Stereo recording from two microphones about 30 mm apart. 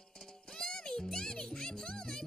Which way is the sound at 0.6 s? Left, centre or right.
Left.